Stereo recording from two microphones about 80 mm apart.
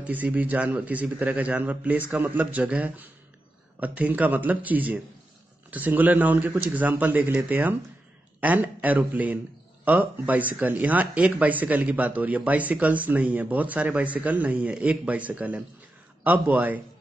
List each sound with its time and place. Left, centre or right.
0.0 s speech: right